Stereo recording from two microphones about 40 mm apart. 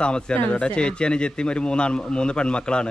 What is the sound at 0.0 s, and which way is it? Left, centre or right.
Speech, left.